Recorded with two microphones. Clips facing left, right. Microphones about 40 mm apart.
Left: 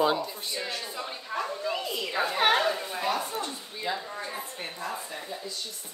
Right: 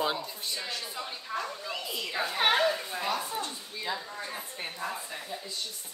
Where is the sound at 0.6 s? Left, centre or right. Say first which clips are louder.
Left 4 dB; centre.